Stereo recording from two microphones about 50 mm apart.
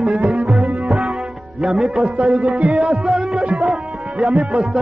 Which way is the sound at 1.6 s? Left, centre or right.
Centre.